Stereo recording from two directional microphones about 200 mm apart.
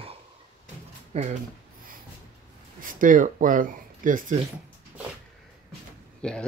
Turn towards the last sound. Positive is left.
turn(degrees=5)  # may be behind; listen again after turning